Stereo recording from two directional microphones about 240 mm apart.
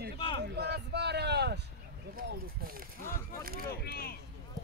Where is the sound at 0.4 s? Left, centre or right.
Right.